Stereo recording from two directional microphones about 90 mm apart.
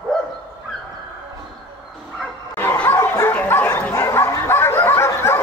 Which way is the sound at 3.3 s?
20° left (ahead or behind).